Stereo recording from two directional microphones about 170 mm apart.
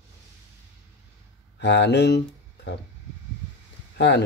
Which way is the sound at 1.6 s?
90° left.